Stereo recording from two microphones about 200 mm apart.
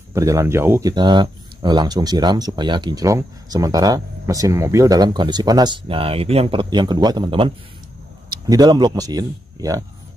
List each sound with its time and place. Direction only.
0.1 s speech: 15° right (ahead or behind)